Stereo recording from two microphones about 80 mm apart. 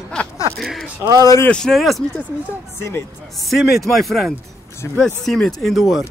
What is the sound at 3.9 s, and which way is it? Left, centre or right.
Speech, centre.